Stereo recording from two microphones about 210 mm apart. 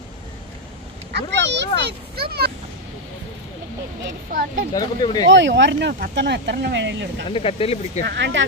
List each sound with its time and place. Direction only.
1.1 s a sound: 55° right (ahead or behind)
1.8 s a child's voice: 50° right (ahead or behind)
4.7 s speech: 20° left (ahead or behind)
5.3 s speech: 60° right (ahead or behind)
7.2 s speech: 25° left (ahead or behind)
8.1 s speech: 60° right (ahead or behind)